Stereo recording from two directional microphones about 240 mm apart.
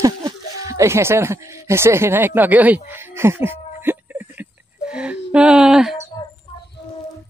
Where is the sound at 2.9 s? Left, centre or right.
Centre.